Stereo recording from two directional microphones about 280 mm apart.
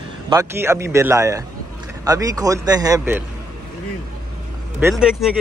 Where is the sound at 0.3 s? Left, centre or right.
Centre.